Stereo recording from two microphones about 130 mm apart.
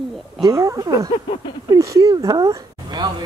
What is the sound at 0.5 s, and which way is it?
Speech, 25° right (ahead or behind).